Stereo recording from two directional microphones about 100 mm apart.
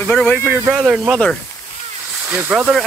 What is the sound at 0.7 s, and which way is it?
Speech, 10° right (ahead or behind).